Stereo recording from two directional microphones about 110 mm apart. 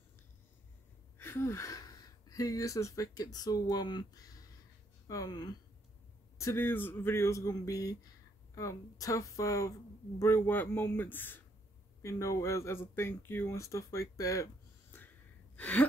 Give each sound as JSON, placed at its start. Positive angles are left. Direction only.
{"t": 1.1, "sound": "speech", "side_deg": 20}
{"t": 6.3, "sound": "speech", "side_deg": 25}
{"t": 12.0, "sound": "speech", "side_deg": 30}
{"t": 15.5, "sound": "gasp", "side_deg": 15}